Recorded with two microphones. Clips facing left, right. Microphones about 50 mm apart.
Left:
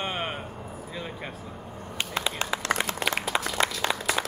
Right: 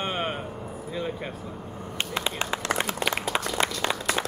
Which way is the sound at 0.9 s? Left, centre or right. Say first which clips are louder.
Right 7 dB; centre.